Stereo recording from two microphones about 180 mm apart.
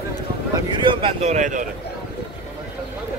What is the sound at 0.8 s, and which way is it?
Speech, 35° right (ahead or behind).